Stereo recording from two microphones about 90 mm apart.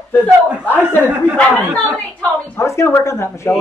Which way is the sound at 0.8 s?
20° right (ahead or behind).